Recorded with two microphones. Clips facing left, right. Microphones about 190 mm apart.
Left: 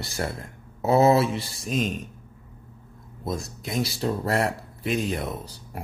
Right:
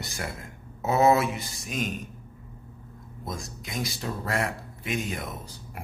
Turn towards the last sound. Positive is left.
turn(degrees=30)  # may be behind; listen again after turning